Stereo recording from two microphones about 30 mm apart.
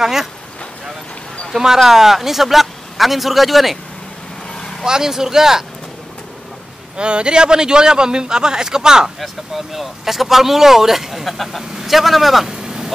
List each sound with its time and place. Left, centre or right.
0.0 s speech: centre
1.6 s a man's voice: centre
4.6 s vehicle: left
4.8 s speech: centre
7.0 s a man's voice: right
9.2 s a man's voice: centre
12.4 s vehicle: centre